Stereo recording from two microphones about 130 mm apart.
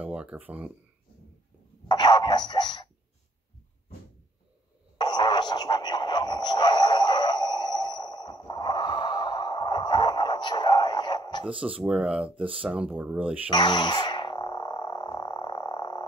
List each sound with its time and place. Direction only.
0.0 s speech: 10° right (ahead or behind)
1.9 s a sound: 35° left (ahead or behind)
4.9 s radio: 35° left (ahead or behind)
11.8 s speech: 10° right (ahead or behind)
13.5 s frog: 35° left (ahead or behind)